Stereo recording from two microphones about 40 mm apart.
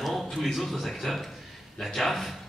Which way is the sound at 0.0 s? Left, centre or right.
Centre.